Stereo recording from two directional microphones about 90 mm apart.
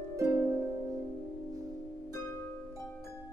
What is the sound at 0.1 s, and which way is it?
Harp, 25° right (ahead or behind).